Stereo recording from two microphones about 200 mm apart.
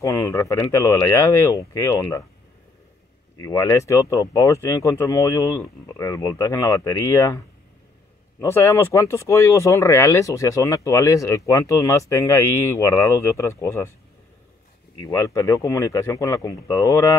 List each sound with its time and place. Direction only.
0.0 s speech: 15° left (ahead or behind)
3.4 s speech: 15° left (ahead or behind)
15.1 s speech: 15° left (ahead or behind)